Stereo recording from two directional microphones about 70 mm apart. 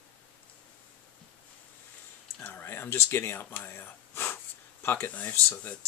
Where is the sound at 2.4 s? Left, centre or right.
Left.